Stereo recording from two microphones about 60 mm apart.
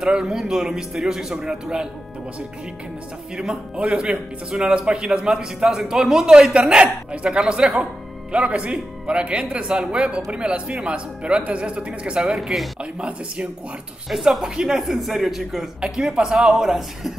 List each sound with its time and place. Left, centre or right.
0.0 s speech: centre
3.3 s speech: centre
14.1 s speech: centre